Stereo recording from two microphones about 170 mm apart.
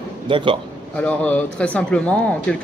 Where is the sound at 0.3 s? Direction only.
30° right (ahead or behind).